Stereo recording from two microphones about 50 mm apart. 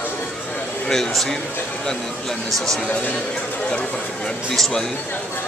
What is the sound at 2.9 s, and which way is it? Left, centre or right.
Speech, left.